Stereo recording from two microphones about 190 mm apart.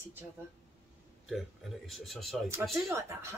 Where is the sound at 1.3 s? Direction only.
Centre (ahead or behind).